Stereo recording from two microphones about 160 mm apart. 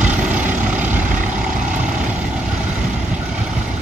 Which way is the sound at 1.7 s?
10° right (ahead or behind).